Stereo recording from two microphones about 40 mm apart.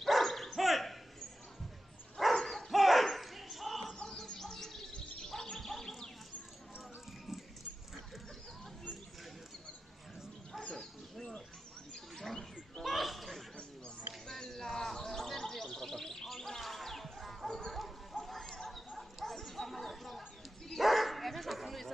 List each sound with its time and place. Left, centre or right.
0.0 s dog: centre
2.1 s dog: centre
2.7 s basketball bounce: centre
3.9 s a sound: centre
4.9 s bird: centre
5.3 s bird: centre
7.1 s music: centre
10.7 s bow-wow: centre
11.9 s a sound: centre
12.8 s a sound: centre
14.4 s bird: centre
17.6 s dog: centre
20.8 s bow-wow: centre